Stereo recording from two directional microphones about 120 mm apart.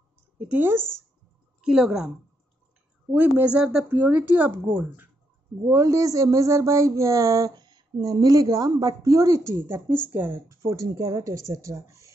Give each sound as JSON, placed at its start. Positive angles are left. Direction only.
{"t": 0.4, "sound": "speech", "side_deg": -15}
{"t": 1.6, "sound": "a woman's voice", "side_deg": -5}
{"t": 3.1, "sound": "speech", "side_deg": -15}
{"t": 5.7, "sound": "speech", "side_deg": -25}